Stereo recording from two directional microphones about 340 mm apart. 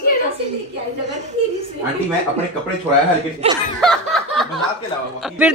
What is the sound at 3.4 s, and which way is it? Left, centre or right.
Speech, centre.